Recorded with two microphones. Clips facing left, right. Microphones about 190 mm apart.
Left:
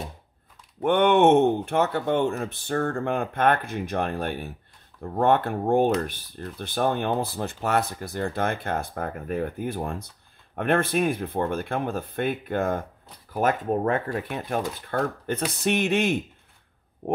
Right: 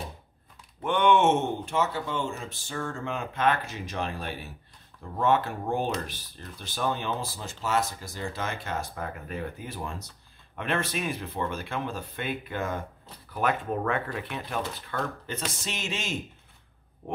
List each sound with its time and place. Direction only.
0.8 s speech: 55° left (ahead or behind)